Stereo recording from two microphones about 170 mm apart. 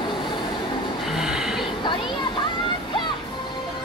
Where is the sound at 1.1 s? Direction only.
Centre (ahead or behind).